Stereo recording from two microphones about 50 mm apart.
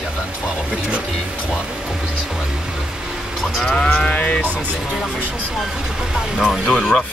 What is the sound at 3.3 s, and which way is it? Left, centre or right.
Sheep, centre.